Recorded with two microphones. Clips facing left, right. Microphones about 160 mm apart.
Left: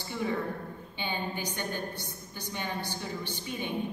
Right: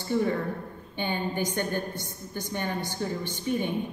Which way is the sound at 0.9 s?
50° right (ahead or behind).